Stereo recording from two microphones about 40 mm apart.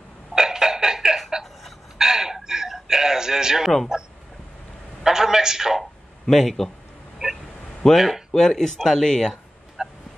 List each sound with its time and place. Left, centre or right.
0.3 s a sound: centre
3.9 s speech: centre
5.0 s a sound: centre
6.2 s speech: centre
7.8 s speech: centre
9.8 s fowl: centre